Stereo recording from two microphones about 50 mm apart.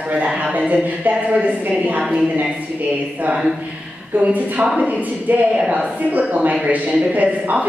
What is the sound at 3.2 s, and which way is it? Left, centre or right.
A woman's voice, right.